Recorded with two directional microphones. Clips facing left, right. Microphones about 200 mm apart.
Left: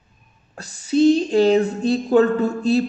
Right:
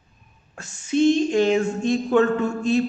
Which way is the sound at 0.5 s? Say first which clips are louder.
Left 3 dB; 35° left (ahead or behind).